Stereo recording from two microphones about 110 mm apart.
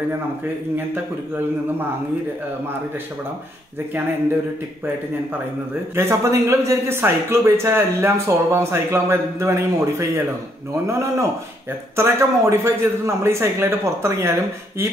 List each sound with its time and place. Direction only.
5.9 s speech: 25° right (ahead or behind)